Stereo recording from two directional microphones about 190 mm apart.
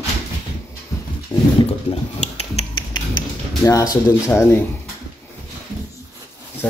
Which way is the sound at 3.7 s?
20° left (ahead or behind).